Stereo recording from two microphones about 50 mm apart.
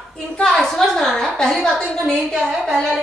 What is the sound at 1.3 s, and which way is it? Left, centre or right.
A woman's voice, centre.